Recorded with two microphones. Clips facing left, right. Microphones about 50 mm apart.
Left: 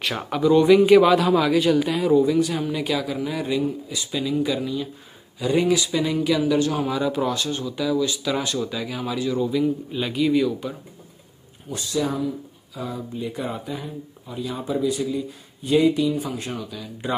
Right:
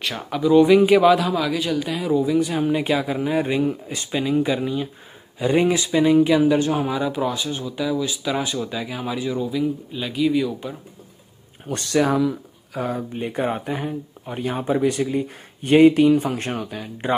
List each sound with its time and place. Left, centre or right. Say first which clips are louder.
0.0 s speech: left 1 dB; centre
2.6 s speech: right 4 dB; right
9.5 s speech: left 1 dB; centre
11.6 s speech: right 5 dB; right
12.7 s speech: right 5 dB; right